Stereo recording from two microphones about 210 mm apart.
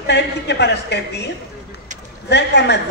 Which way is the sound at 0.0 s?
55° left (ahead or behind).